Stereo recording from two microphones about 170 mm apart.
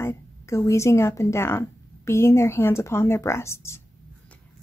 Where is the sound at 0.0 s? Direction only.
15° left (ahead or behind).